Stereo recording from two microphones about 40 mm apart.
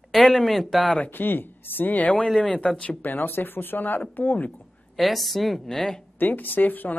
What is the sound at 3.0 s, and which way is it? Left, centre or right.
A woman's voice, left.